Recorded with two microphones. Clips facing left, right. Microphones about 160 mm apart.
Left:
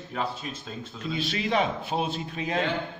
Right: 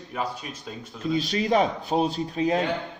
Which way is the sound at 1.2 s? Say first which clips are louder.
Right 4 dB; 40° right (ahead or behind).